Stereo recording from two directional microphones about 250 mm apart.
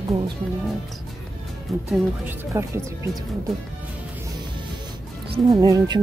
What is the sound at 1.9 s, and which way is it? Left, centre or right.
Speech, centre.